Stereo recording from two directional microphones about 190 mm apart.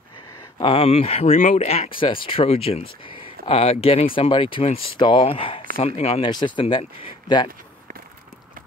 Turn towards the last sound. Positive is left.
turn(degrees=25)  # may be behind; listen again after turning